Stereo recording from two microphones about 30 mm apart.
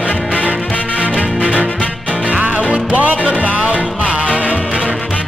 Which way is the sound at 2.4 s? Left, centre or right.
Right.